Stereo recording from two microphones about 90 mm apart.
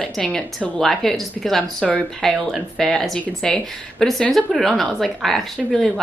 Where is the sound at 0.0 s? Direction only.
10° left (ahead or behind).